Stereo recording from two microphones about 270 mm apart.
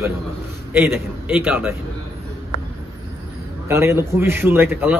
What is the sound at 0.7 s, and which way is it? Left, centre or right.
A man's voice, centre.